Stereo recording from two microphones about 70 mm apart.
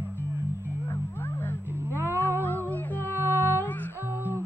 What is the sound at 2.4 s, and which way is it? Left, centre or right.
Music, left.